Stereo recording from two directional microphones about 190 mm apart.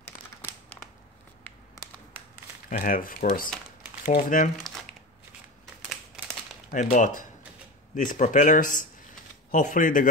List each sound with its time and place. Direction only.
0.5 s a sound: 5° left (ahead or behind)
2.7 s speech: 50° left (ahead or behind)
6.7 s speech: 40° left (ahead or behind)